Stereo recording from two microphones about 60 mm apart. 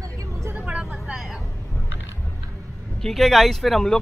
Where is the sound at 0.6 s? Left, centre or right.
Centre.